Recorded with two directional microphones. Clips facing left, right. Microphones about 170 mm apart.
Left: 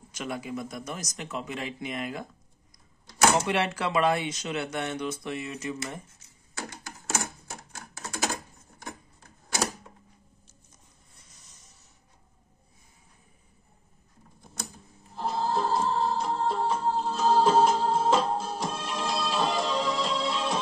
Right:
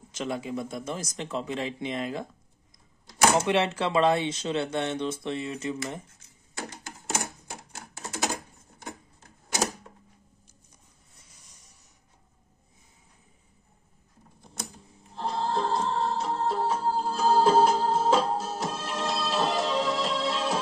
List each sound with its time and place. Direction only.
0.1 s speech: 25° right (ahead or behind)
3.3 s speech: 25° right (ahead or behind)
7.7 s typewriter: 20° right (ahead or behind)
15.1 s music: 5° left (ahead or behind)